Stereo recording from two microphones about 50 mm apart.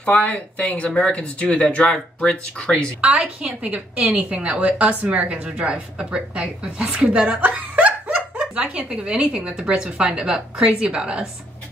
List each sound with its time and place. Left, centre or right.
0.0 s speech: left
3.0 s a woman's voice: right
7.3 s snicker: right
8.9 s a woman's voice: centre